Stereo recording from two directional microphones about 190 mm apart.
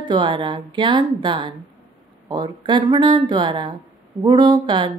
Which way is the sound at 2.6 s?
25° right (ahead or behind).